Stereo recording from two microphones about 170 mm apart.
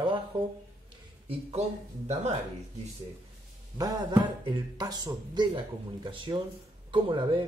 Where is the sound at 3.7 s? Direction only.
20° right (ahead or behind).